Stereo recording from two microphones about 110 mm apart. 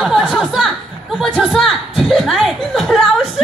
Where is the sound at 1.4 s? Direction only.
Centre (ahead or behind).